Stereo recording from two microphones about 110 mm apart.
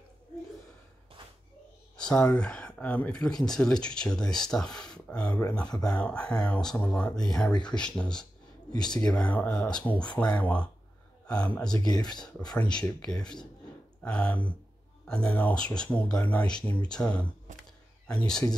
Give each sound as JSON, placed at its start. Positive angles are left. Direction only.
{"t": 2.0, "sound": "speech", "side_deg": 10}
{"t": 11.8, "sound": "speech", "side_deg": 35}
{"t": 12.5, "sound": "speech", "side_deg": 10}